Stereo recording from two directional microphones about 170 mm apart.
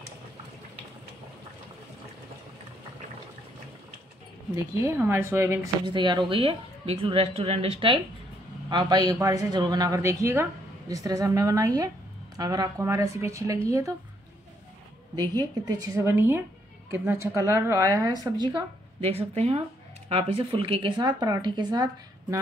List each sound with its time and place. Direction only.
4.6 s a woman's voice: 15° right (ahead or behind)
5.9 s a woman's voice: 25° right (ahead or behind)
15.1 s speech: 25° right (ahead or behind)